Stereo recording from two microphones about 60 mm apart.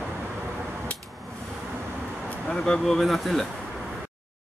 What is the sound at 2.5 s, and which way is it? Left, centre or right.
Speech, centre.